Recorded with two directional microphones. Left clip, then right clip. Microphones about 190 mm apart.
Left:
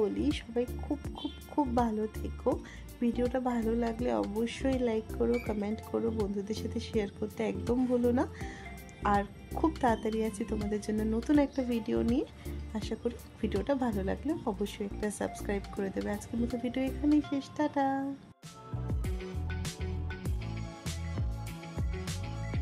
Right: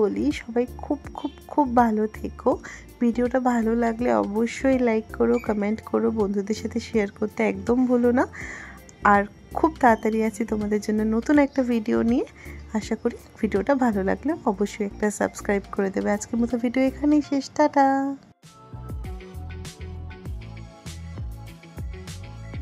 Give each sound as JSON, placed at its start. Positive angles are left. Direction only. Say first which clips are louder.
{"t": 0.0, "sound": "speech", "louder": "right 8 dB", "side_deg": -25}
{"t": 18.9, "sound": "music", "louder": "even", "side_deg": 0}
{"t": 21.7, "sound": "music", "louder": "even", "side_deg": 0}